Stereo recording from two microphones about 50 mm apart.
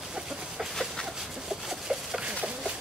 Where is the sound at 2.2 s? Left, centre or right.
Right.